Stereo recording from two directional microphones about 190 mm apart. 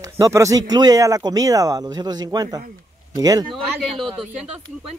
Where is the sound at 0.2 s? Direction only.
15° right (ahead or behind).